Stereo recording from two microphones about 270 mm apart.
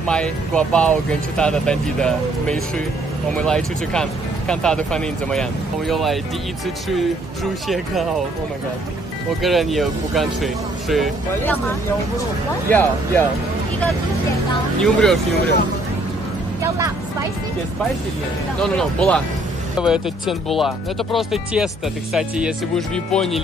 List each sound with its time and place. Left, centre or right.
0.0 s speech: centre
7.6 s speech: centre
9.4 s speech: centre
12.6 s speech: centre
14.8 s speech: centre
18.6 s speech: centre